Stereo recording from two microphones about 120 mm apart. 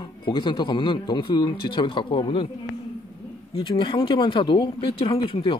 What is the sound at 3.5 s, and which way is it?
Speech, 40° left (ahead or behind).